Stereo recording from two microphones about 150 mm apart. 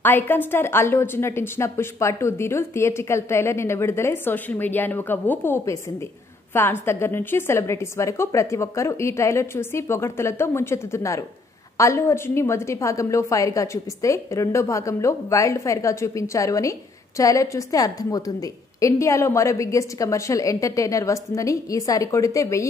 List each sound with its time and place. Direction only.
0.0 s a woman's voice: 15° left (ahead or behind)